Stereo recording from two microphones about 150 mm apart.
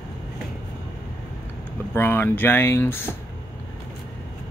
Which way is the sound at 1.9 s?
15° left (ahead or behind).